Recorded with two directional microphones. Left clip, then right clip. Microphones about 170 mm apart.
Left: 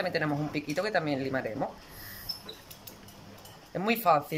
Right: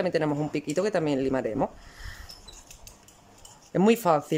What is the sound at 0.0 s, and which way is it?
Speech, 35° right (ahead or behind).